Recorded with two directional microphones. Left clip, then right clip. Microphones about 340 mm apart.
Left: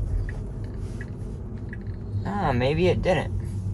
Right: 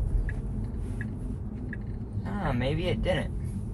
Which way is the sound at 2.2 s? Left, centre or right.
Left.